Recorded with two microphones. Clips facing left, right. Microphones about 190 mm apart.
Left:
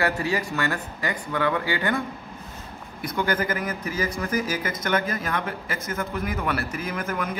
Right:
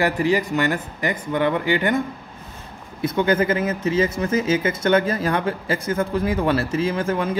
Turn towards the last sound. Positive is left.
turn(degrees=-30)  # may be behind; listen again after turning